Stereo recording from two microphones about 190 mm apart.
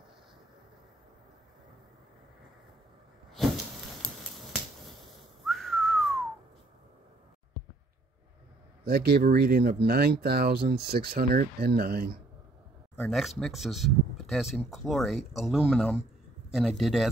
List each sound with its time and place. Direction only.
4.4 s finger snapping: centre (ahead or behind)
5.4 s whistling: centre (ahead or behind)
8.8 s speech: 55° right (ahead or behind)
13.1 s speech: centre (ahead or behind)